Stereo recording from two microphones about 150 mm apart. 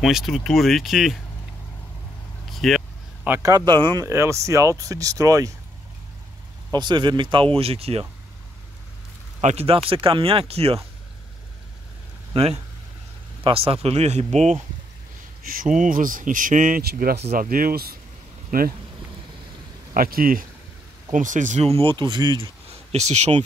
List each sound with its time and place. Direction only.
0.0 s speech: centre (ahead or behind)
2.5 s vehicle: centre (ahead or behind)
3.3 s speech: 15° right (ahead or behind)
3.5 s speech: 30° right (ahead or behind)
4.0 s speech: 20° right (ahead or behind)
6.7 s speech: 30° right (ahead or behind)
9.4 s speech: 45° right (ahead or behind)
12.4 s speech: 45° right (ahead or behind)
15.4 s speech: 65° right (ahead or behind); by 17.2 s 85° right
17.3 s speech: 75° right (ahead or behind)
19.9 s speech: 80° right
21.1 s speech: 60° right (ahead or behind)